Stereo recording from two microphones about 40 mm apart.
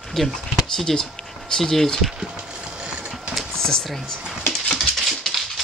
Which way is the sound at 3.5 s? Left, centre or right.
Centre.